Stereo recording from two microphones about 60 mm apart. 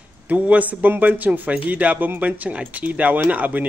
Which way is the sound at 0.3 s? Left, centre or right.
Right.